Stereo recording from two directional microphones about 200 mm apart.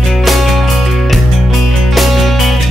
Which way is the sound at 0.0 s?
Centre (ahead or behind).